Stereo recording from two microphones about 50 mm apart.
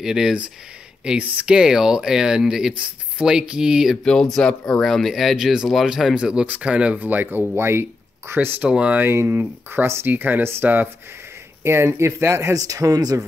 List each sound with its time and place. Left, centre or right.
0.0 s speech: centre
1.0 s speech: right
1.5 s speech: centre
3.9 s speech: centre
6.1 s speech: centre
6.4 s speech: right
7.1 s speech: right
7.5 s speech: right
8.6 s speech: centre
9.3 s speech: right
10.0 s speech: right
11.6 s speech: right